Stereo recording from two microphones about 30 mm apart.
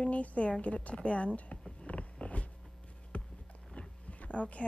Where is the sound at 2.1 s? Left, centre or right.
Left.